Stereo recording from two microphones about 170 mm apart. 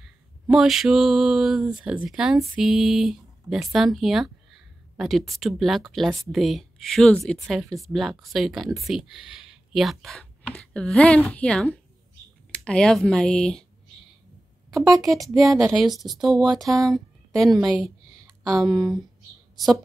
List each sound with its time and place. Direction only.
0.0 s mantra: centre (ahead or behind)
1.8 s speech: 5° right (ahead or behind)
15.0 s a woman's voice: centre (ahead or behind)
18.4 s speech: 20° right (ahead or behind)
18.7 s a woman's voice: 5° right (ahead or behind)